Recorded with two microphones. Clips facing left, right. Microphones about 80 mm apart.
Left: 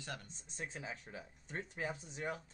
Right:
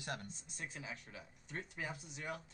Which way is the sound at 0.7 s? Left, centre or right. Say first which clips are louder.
Left 3 dB; left.